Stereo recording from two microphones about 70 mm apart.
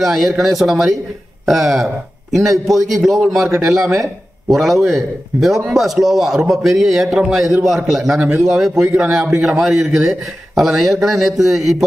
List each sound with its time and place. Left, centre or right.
0.0 s a man's voice: centre
8.2 s a man's voice: centre